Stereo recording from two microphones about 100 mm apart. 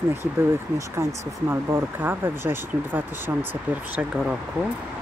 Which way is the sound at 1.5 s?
20° right (ahead or behind).